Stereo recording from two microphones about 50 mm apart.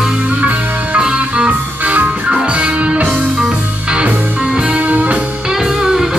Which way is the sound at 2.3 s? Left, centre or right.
Centre.